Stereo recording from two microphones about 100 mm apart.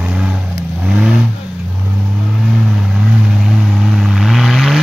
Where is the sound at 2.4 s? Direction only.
Centre (ahead or behind).